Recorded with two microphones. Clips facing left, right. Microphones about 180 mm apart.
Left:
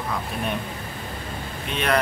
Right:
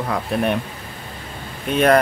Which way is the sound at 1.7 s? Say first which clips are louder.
Right 9 dB; 45° right (ahead or behind).